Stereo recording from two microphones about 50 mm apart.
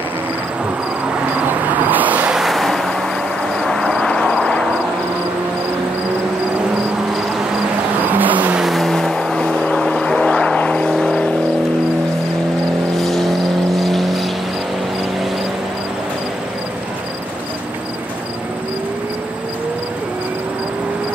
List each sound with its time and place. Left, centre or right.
1.9 s vehicle: right
2.3 s vehicle: centre
8.1 s vehicle: right
8.5 s vehicle: centre
9.0 s vehicle: centre
10.9 s vehicle: centre
13.0 s vehicle: centre